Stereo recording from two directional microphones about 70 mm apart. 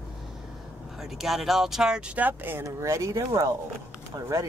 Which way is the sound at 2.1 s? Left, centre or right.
Right.